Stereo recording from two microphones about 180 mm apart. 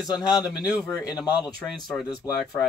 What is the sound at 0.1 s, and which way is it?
Speech, 20° left (ahead or behind).